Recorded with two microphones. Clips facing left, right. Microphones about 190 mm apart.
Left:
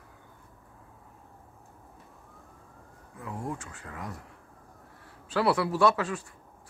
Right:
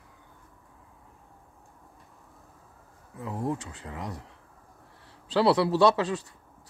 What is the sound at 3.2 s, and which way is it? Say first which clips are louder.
Speech: right 5 dB; 25° right (ahead or behind).